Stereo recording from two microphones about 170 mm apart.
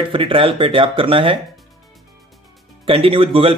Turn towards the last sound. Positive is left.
turn(degrees=-35)  # may be behind; listen again after turning